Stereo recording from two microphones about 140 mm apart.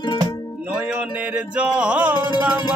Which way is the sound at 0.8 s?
10° right (ahead or behind).